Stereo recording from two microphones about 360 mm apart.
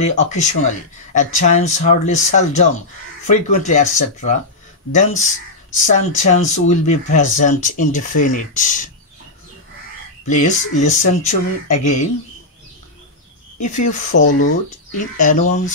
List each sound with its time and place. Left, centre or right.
0.0 s speech: centre
10.2 s speech: centre
13.6 s speech: centre